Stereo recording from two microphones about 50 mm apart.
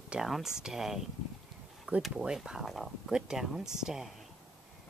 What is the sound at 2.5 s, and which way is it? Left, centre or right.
Speech, centre.